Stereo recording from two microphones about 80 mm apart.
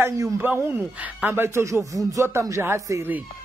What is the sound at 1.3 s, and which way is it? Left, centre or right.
Speech, right.